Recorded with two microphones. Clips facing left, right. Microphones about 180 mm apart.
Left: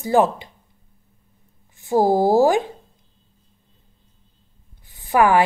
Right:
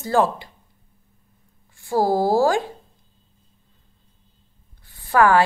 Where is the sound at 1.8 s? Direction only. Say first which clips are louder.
Left 3 dB; 20° left (ahead or behind).